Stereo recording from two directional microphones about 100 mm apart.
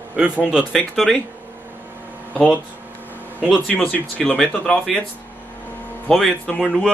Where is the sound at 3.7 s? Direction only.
20° left (ahead or behind).